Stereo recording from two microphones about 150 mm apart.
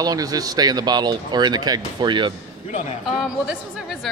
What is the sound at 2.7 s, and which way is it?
Speech, 45° left (ahead or behind).